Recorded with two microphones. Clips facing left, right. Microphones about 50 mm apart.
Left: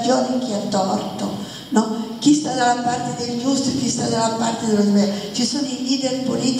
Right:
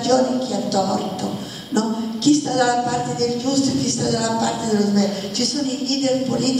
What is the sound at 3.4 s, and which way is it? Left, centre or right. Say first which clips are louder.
Speech: left 4 dB; left.